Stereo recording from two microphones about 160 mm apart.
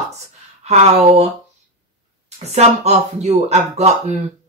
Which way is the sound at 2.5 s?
40° right (ahead or behind).